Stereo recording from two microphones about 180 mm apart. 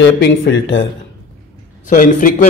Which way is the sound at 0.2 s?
90° left.